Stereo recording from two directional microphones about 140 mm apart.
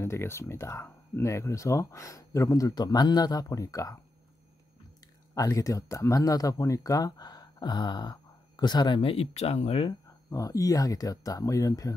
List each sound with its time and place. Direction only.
0.0 s speech: 20° left (ahead or behind)
5.3 s speech: 25° left (ahead or behind); by 9.8 s 45° left (ahead or behind)
9.8 s speech: 25° left (ahead or behind)